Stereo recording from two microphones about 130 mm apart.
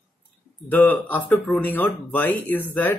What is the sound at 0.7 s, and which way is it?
Speech, 15° left (ahead or behind).